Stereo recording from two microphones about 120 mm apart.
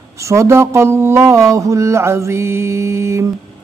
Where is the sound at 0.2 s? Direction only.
25° right (ahead or behind).